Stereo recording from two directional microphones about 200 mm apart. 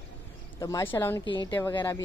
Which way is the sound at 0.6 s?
15° left (ahead or behind).